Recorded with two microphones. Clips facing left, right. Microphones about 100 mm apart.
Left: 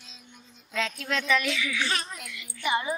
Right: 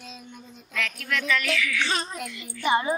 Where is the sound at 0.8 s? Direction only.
20° left (ahead or behind).